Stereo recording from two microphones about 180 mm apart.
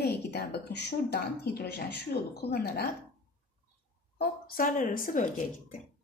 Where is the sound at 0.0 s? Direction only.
65° left (ahead or behind).